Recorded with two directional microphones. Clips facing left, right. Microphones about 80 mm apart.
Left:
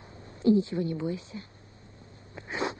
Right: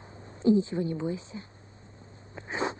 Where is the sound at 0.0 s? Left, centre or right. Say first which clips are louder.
Even; right.